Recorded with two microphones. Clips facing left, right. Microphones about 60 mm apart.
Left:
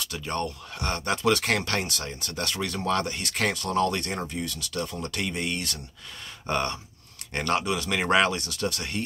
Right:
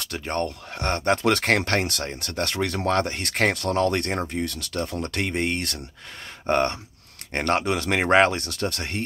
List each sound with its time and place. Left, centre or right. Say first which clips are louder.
0.0 s speech: right 3 dB; right